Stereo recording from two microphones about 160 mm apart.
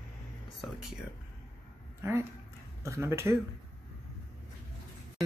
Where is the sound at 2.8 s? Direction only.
15° right (ahead or behind).